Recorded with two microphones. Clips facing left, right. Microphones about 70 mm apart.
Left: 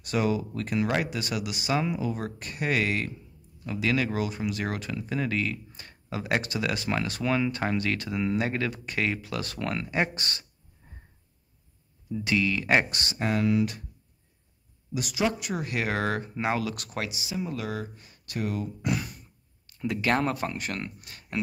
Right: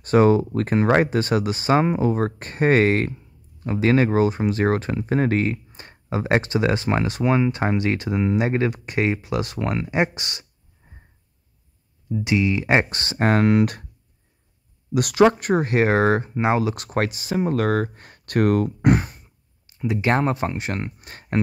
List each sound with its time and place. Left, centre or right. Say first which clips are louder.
0.0 s speech: right 11 dB; right
12.1 s speech: right 5 dB; right
13.2 s speech: right 8 dB; right
14.9 s speech: right 12 dB; right
17.0 s speech: right 10 dB; right
18.9 s a sound: right 8 dB; right
19.8 s speech: right 5 dB; centre; by 21.4 s right